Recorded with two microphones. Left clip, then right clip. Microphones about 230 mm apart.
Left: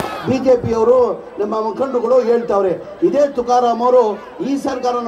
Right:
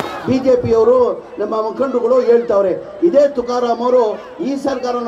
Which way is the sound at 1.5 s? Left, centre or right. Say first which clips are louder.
Right 2 dB; left.